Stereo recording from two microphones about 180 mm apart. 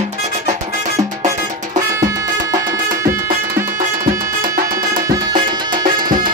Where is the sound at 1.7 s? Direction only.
20° right (ahead or behind).